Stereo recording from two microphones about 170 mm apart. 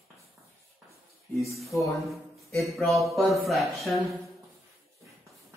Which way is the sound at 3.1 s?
Centre (ahead or behind).